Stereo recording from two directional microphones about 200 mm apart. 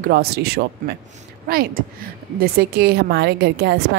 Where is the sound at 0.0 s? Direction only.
50° right (ahead or behind).